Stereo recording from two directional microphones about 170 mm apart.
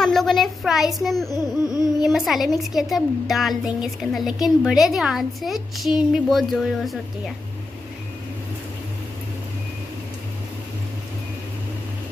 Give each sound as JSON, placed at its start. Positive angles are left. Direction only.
{"t": 0.0, "sound": "a child's voice", "side_deg": 0}
{"t": 1.3, "sound": "a sound", "side_deg": 20}
{"t": 2.0, "sound": "a woman's voice", "side_deg": 0}